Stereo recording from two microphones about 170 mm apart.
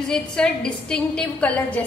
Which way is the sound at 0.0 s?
5° left (ahead or behind).